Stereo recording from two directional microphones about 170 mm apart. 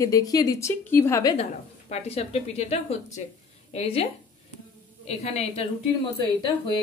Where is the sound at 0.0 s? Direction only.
20° left (ahead or behind).